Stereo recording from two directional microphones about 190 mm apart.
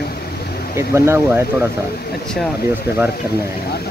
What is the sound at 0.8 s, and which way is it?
Speech, 15° right (ahead or behind).